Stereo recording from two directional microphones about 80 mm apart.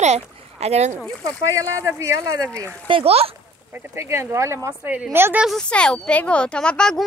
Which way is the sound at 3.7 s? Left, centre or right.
Right.